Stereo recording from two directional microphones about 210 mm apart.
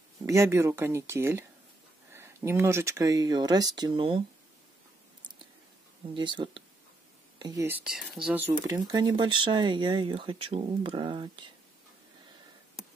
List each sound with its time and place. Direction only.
0.2 s speech: 15° right (ahead or behind)
6.1 s speech: 20° right (ahead or behind)
7.6 s speech: 5° right (ahead or behind)
8.6 s speech: 15° right (ahead or behind)